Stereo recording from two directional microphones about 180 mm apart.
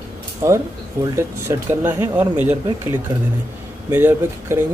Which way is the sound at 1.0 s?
15° right (ahead or behind).